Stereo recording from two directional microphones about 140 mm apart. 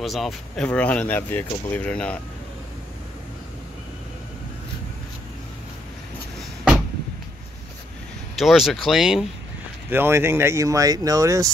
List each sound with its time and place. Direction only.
0.0 s speech: centre (ahead or behind)
8.4 s speech: centre (ahead or behind)
9.8 s speech: 15° right (ahead or behind)